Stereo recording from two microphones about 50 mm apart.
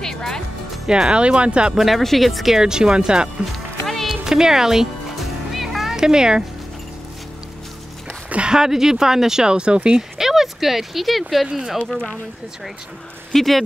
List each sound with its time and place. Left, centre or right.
0.0 s music: centre
0.8 s speech: centre
1.1 s speech: right
1.8 s speech: centre
3.8 s music: centre
4.2 s music: centre
8.3 s a sound: right
8.5 s speech: centre
10.1 s speech: centre
13.3 s speech: centre